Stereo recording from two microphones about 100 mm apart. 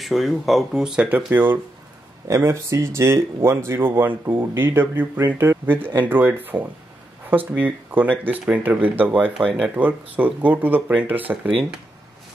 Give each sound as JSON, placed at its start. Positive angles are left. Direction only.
{"t": 0.0, "sound": "speech", "side_deg": 0}